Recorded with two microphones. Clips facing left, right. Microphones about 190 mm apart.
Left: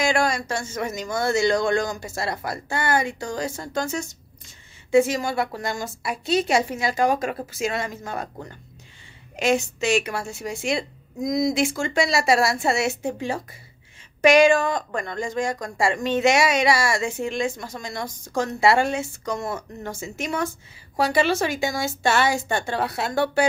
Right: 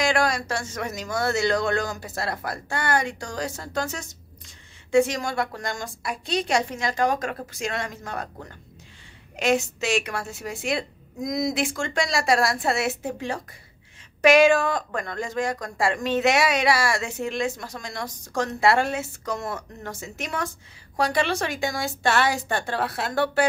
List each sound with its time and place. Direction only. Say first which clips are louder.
0.0 s speech: left 1 dB; centre (ahead or behind)